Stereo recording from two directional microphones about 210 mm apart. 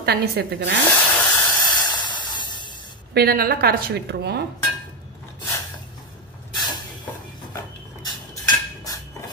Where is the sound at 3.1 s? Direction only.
45° right (ahead or behind).